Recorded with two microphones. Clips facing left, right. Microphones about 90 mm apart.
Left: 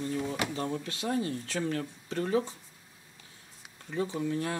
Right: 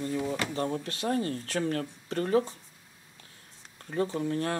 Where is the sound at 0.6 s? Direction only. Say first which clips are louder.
Right 3 dB; 40° right (ahead or behind).